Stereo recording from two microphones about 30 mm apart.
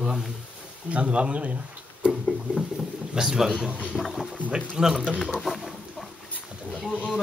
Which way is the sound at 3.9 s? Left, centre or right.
Centre.